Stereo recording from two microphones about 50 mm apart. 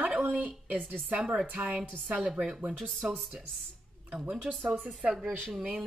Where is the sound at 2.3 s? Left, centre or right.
Centre.